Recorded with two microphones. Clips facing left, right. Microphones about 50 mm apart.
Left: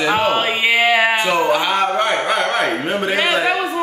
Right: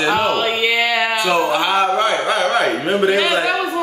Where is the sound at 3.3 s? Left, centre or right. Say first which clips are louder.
Even; centre.